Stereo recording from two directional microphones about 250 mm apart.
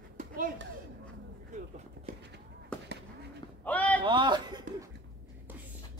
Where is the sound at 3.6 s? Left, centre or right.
Centre.